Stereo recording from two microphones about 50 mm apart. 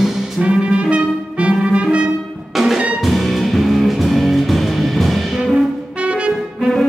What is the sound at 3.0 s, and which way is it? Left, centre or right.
Music, centre.